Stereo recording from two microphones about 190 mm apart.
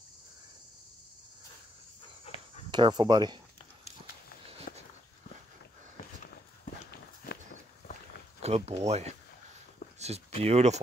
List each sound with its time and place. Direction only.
2.2 s dog: 35° left (ahead or behind)
2.7 s speech: 20° right (ahead or behind)
4.7 s walk: 45° left (ahead or behind)
6.6 s horse: 55° left (ahead or behind)
8.4 s speech: 35° right (ahead or behind)